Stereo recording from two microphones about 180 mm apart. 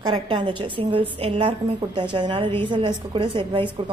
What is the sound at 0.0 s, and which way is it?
A woman's voice, 25° right (ahead or behind).